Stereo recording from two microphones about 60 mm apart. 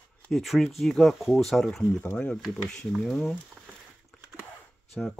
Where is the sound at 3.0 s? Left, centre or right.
Centre.